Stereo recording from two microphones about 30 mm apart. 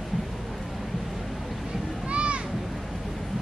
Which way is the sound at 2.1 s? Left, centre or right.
Right.